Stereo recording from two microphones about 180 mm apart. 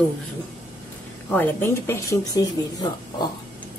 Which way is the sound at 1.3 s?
10° left (ahead or behind).